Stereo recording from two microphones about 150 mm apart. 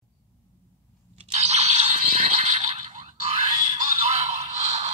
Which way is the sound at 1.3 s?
50° right (ahead or behind).